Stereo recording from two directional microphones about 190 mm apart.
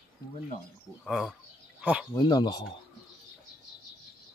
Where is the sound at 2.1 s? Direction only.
25° left (ahead or behind).